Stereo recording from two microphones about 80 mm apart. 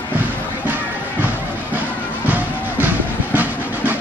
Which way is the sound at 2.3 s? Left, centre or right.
Right.